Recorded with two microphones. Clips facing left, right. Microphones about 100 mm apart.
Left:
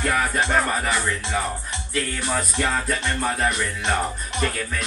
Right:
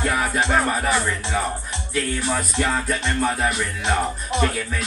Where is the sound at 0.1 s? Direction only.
5° right (ahead or behind).